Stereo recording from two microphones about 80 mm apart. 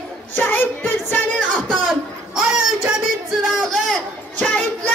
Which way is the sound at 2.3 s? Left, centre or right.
Centre.